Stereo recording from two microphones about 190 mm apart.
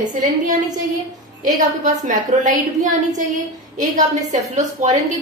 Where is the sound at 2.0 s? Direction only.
40° right (ahead or behind).